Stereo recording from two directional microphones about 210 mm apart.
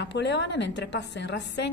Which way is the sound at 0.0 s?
55° left (ahead or behind).